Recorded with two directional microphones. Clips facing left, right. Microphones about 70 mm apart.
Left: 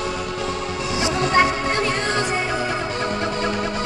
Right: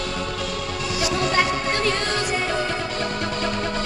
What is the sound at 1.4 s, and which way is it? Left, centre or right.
Music, left.